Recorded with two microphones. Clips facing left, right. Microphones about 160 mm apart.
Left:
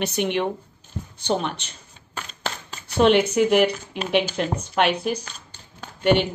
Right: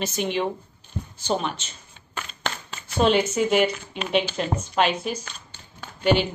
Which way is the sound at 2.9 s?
70° left (ahead or behind).